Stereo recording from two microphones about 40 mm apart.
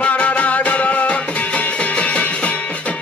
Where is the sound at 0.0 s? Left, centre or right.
Left.